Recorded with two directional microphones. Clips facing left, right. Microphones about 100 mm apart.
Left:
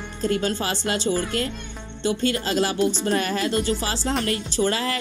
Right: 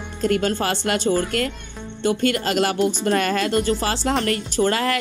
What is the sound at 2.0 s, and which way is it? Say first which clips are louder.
Speech: right 3 dB; 55° right (ahead or behind).